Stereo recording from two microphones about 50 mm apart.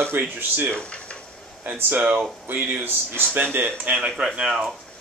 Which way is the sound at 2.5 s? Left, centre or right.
Right.